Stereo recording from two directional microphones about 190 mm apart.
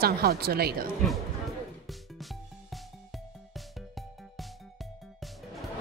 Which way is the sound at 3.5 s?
Centre (ahead or behind).